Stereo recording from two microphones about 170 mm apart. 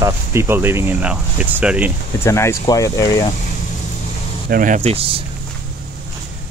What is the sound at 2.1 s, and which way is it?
Speech, 15° left (ahead or behind).